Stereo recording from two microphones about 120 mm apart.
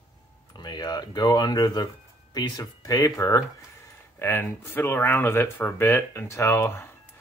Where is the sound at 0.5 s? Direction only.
35° left (ahead or behind).